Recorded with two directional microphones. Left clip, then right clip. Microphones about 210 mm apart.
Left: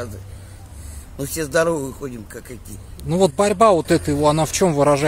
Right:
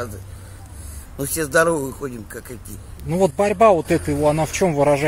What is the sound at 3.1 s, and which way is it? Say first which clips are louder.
Speech: left 1 dB; 30° left (ahead or behind).